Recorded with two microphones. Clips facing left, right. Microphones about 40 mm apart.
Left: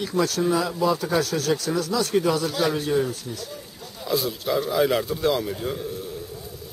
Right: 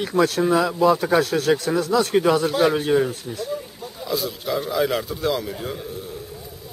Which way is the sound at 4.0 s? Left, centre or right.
Centre.